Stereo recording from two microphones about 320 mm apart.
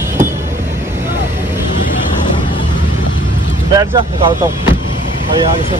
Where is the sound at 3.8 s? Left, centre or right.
Centre.